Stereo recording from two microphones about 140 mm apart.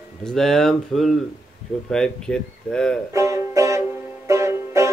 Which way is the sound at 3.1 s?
20° right (ahead or behind).